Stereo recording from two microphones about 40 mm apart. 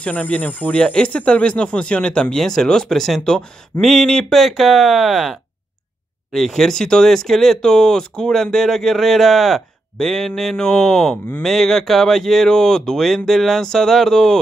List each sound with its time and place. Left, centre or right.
0.0 s speech: left
0.7 s speech: left
2.3 s speech: centre
4.4 s speech: centre
6.3 s speech: centre